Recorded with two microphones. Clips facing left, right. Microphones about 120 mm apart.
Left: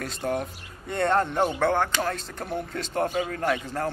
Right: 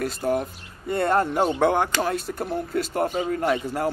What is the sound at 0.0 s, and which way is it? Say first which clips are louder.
Speech: right 4 dB; 5° right (ahead or behind).